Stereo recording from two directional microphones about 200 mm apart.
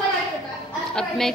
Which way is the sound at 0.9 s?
Centre (ahead or behind).